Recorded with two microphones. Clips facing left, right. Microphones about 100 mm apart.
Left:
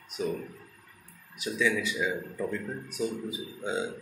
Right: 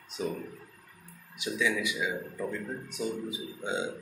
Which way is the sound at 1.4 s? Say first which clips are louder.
Left 2 dB; 15° right (ahead or behind).